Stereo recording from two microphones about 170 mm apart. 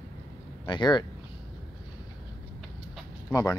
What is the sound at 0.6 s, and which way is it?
Speech, 25° left (ahead or behind).